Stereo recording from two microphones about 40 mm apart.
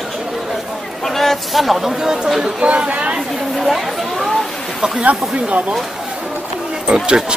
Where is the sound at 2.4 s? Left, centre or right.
Right.